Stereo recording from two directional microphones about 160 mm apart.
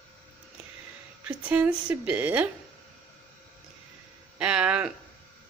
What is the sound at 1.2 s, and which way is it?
A woman's voice, 10° right (ahead or behind).